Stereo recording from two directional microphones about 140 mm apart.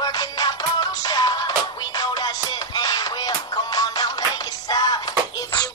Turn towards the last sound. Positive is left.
turn(degrees=30)  # may be behind; listen again after turning